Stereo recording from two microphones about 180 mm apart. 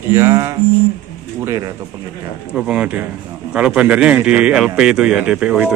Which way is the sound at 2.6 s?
5° right (ahead or behind).